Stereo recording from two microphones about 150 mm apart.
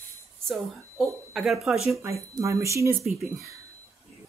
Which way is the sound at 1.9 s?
20° right (ahead or behind).